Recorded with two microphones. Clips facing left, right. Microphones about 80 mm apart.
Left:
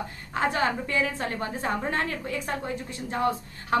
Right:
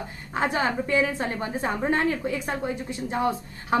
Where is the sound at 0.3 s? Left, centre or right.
Centre.